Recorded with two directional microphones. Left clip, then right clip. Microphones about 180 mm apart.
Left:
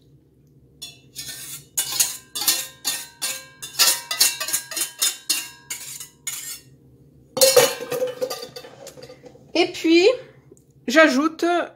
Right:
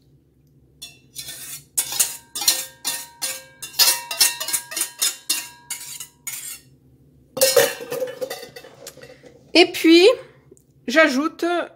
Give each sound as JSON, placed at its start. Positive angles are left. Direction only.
{"t": 1.2, "sound": "cutlery", "side_deg": -15}
{"t": 1.8, "sound": "music", "side_deg": 0}
{"t": 3.1, "sound": "a sound", "side_deg": 0}
{"t": 6.0, "sound": "cutlery", "side_deg": 0}
{"t": 7.4, "sound": "a sound", "side_deg": 0}
{"t": 9.5, "sound": "a woman's voice", "side_deg": -40}
{"t": 10.5, "sound": "a woman's voice", "side_deg": 0}